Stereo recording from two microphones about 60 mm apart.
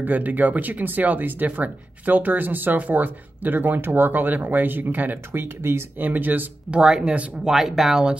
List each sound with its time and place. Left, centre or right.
0.0 s speech: right
6.0 s speech: right
6.7 s speech: centre
7.5 s speech: centre